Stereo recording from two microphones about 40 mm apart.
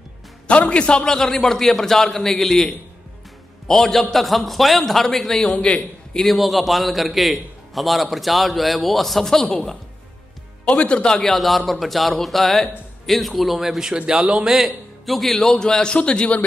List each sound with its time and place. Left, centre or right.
0.5 s a man's voice: left
1.1 s a man's voice: centre
5.6 s a man's voice: left
6.2 s a man's voice: centre
10.6 s speech: left
11.1 s a man's voice: centre
15.0 s a man's voice: centre
15.5 s a man's voice: centre